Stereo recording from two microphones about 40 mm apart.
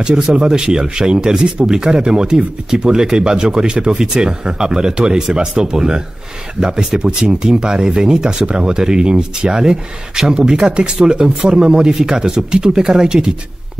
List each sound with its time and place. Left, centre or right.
0.0 s speech: right